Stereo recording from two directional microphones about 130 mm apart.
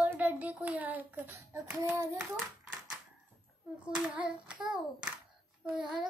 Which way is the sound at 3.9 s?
10° right (ahead or behind).